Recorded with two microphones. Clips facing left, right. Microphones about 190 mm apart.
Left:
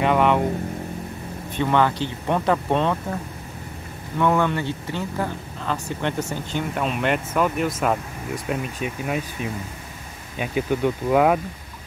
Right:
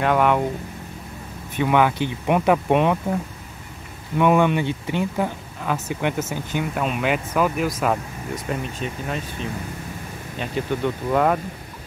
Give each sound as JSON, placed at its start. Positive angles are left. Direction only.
{"t": 0.0, "sound": "speech", "side_deg": 0}
{"t": 1.6, "sound": "speech", "side_deg": -10}
{"t": 4.2, "sound": "speech", "side_deg": -15}